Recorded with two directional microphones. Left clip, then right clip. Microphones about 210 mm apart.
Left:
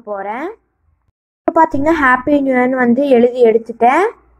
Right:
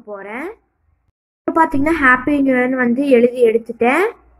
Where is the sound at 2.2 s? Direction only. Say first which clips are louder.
Left 3 dB; 55° left (ahead or behind).